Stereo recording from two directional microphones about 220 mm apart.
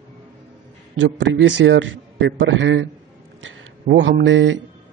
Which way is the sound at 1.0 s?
55° right (ahead or behind).